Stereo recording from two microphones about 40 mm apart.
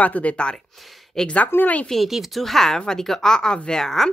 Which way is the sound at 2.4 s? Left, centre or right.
Centre.